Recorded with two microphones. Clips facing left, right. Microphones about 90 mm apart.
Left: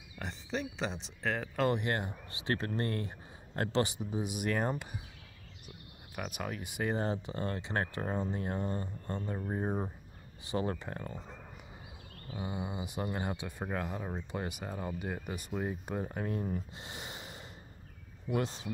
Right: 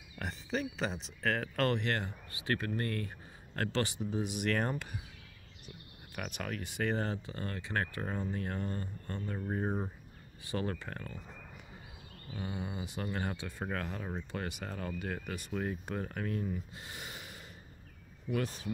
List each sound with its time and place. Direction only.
0.2 s speech: centre (ahead or behind)
1.8 s speech: 15° left (ahead or behind)
6.1 s speech: 10° left (ahead or behind); by 11.2 s 25° left (ahead or behind)
12.3 s speech: 15° left (ahead or behind)
16.7 s snort: 25° left (ahead or behind)
18.3 s speech: 25° left (ahead or behind)